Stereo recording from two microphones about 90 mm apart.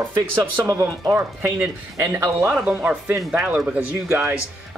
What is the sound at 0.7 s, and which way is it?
Speech, 35° right (ahead or behind).